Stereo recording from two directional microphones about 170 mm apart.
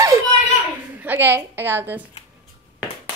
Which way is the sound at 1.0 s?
10° right (ahead or behind).